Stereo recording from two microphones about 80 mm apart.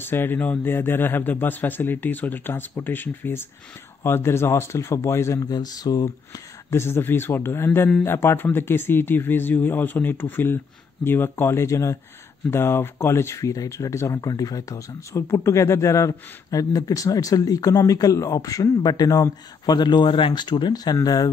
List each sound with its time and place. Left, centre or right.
0.0 s speech: left
5.4 s speech: left
6.7 s speech: left